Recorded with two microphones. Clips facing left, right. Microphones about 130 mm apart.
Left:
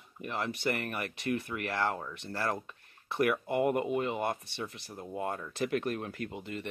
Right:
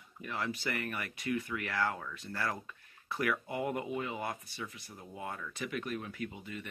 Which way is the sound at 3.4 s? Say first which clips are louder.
Left 7 dB; 55° left (ahead or behind).